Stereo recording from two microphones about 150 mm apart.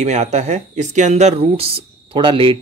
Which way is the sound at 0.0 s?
50° right (ahead or behind).